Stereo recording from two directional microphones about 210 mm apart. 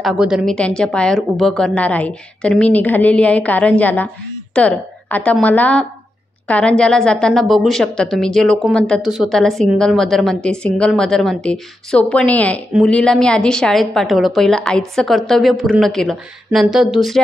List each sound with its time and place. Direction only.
0.0 s a woman's voice: 5° right (ahead or behind)